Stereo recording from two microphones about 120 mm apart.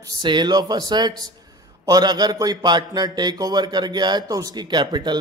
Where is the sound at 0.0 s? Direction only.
35° right (ahead or behind).